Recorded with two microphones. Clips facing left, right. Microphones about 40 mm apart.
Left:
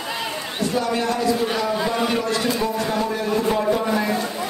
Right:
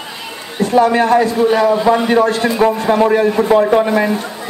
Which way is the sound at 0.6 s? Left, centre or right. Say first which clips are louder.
Right 11 dB; right.